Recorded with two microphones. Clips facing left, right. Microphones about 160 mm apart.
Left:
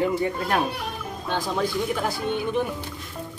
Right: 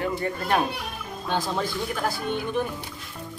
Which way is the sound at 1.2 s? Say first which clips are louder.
Even; centre (ahead or behind).